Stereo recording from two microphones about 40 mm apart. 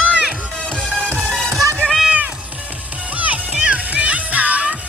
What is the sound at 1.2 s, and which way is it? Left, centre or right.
Music, centre.